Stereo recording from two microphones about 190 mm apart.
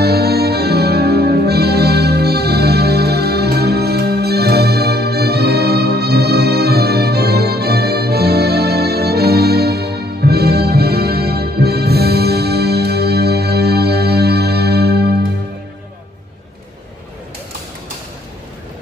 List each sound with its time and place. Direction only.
0.0 s music: 55° right (ahead or behind)